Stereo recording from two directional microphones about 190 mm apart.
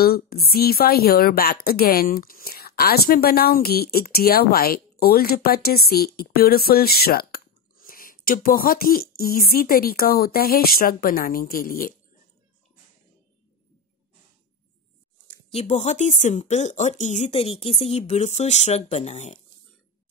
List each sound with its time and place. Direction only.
0.0 s a woman's voice: 55° left (ahead or behind)
15.5 s speech: 35° left (ahead or behind)